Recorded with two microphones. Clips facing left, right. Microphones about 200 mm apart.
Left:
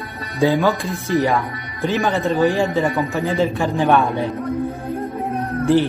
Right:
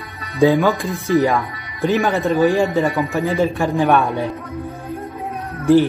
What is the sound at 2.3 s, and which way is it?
Music, 15° right (ahead or behind).